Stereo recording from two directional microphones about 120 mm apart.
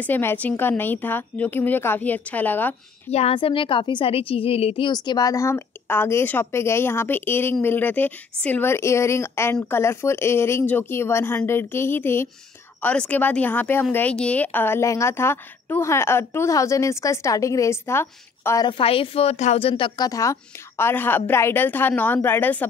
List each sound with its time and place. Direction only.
0.0 s a woman's voice: 15° left (ahead or behind)
3.1 s a woman's voice: 60° left (ahead or behind)
4.9 s a woman's voice: 35° left (ahead or behind)
18.6 s a woman's voice: 45° left (ahead or behind); by 19.6 s 65° left (ahead or behind)
19.6 s a woman's voice: 45° left (ahead or behind)
20.1 s a woman's voice: 25° left (ahead or behind)